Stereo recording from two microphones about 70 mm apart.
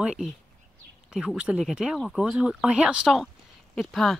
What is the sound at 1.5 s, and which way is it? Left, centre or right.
Speech, centre.